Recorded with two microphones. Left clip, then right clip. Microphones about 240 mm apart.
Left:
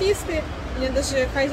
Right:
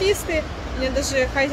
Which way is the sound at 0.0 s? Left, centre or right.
Centre.